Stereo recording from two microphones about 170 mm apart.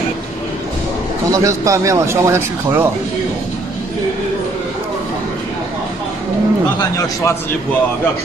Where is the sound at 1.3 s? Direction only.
20° right (ahead or behind).